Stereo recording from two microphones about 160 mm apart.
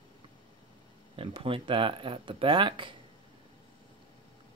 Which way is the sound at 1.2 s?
35° right (ahead or behind).